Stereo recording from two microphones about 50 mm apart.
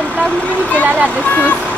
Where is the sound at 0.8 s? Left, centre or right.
Right.